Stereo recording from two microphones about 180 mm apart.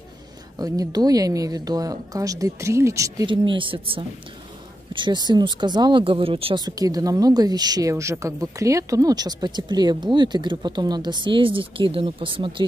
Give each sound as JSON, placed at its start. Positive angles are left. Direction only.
{"t": 0.6, "sound": "speech", "side_deg": -20}